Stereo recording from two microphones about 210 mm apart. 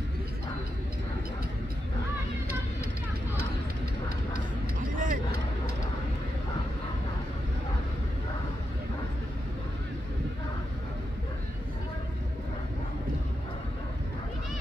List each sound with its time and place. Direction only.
4.7 s vehicle: 40° right (ahead or behind)